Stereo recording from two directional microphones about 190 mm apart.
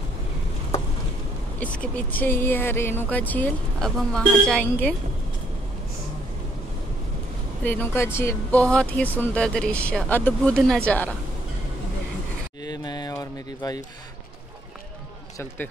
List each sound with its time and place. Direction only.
1.6 s speech: 5° left (ahead or behind)
7.6 s speech: 10° left (ahead or behind)
10.9 s a sound: 5° left (ahead or behind)
12.6 s mantra: 20° left (ahead or behind)
15.3 s speech: 10° left (ahead or behind)